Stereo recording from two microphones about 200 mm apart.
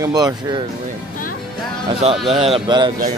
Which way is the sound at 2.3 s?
30° right (ahead or behind).